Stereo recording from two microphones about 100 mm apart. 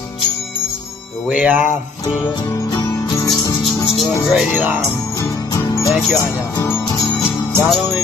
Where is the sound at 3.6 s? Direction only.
Centre (ahead or behind).